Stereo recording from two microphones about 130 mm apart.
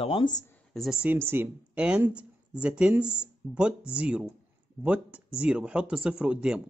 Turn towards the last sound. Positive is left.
turn(degrees=-5)  # may be behind; listen again after turning